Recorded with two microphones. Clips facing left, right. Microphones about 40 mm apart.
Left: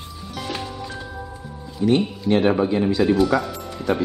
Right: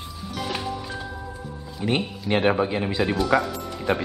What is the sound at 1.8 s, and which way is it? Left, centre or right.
Speech, centre.